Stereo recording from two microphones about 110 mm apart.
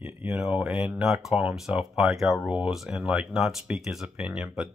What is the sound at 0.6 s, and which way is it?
Speech, 5° right (ahead or behind).